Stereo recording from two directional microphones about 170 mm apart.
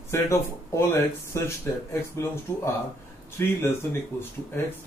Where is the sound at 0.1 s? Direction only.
15° left (ahead or behind).